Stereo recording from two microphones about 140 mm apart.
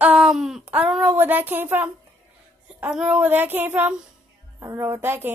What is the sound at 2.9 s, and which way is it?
Child singing, 5° right (ahead or behind).